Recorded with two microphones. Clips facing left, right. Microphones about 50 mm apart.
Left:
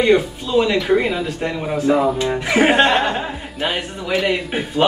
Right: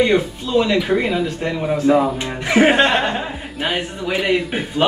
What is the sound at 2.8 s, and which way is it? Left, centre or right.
A man's voice, centre.